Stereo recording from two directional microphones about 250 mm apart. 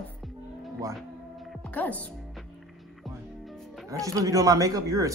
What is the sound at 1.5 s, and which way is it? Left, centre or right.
Music, centre.